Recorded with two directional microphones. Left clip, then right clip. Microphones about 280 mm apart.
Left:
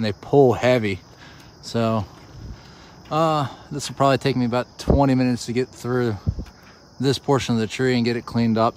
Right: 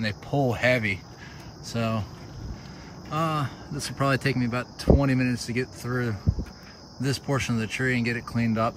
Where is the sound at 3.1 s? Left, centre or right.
Centre.